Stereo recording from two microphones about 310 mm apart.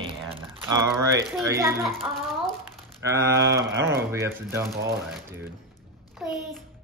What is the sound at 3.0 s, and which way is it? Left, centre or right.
Speech, centre.